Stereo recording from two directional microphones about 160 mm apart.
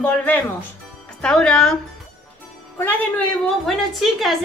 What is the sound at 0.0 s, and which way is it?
A woman's voice, 10° left (ahead or behind).